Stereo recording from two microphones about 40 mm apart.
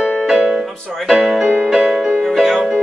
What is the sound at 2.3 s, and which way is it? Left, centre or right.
Music, centre.